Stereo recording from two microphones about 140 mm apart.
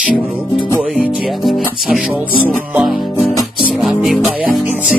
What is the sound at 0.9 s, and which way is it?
Music, centre (ahead or behind).